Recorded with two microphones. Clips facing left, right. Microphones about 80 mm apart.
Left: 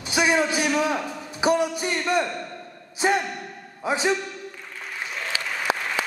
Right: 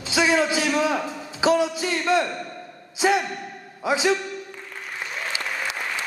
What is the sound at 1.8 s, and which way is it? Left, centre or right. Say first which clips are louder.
Speech: right 1 dB; centre.